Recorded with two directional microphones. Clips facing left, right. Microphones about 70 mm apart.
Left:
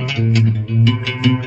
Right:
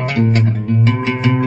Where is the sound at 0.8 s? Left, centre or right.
Right.